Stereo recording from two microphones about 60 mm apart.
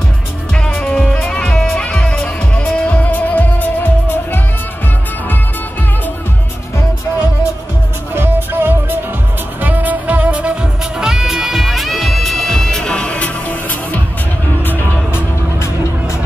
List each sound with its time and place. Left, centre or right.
0.7 s music: centre
8.1 s music: right; by 14.0 s left